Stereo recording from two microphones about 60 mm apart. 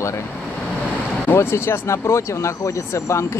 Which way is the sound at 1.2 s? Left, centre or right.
Left.